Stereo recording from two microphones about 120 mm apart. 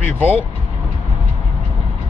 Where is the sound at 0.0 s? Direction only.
15° left (ahead or behind).